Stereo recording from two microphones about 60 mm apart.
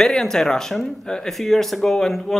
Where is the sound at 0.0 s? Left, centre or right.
Centre.